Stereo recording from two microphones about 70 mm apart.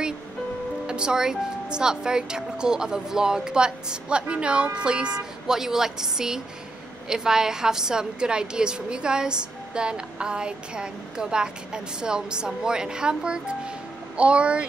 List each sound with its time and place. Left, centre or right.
0.8 s a woman's voice: centre